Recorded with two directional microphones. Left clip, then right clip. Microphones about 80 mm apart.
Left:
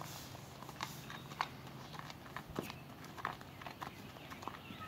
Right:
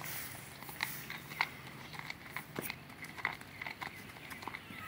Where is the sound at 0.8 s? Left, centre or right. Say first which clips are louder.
Right 6 dB; left.